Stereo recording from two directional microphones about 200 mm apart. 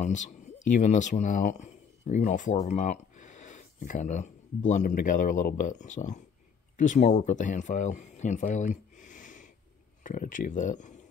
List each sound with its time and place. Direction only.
0.0 s speech: 35° left (ahead or behind)